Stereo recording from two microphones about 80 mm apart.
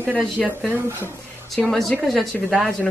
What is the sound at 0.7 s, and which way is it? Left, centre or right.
Speech, right.